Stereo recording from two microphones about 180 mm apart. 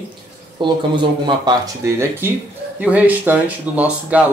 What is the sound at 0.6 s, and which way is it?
Speech, 25° right (ahead or behind).